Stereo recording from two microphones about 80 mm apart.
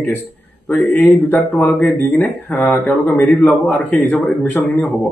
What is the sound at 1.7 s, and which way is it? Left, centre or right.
Speech, centre.